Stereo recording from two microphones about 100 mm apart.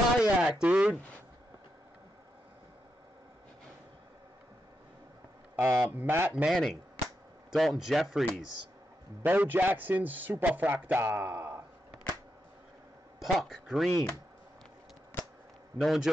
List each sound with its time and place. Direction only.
0.2 s a sound: 10° right (ahead or behind)
5.6 s a man's voice: 20° right (ahead or behind)
6.3 s a man's voice: 5° right (ahead or behind)
9.2 s a man's voice: 15° right (ahead or behind)
13.2 s a man's voice: centre (ahead or behind)
15.8 s a man's voice: 5° right (ahead or behind)